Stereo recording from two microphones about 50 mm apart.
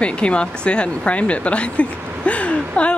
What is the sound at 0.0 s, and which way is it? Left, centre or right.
Speech, left.